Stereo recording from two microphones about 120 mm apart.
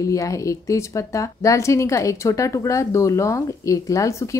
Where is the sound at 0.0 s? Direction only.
25° left (ahead or behind).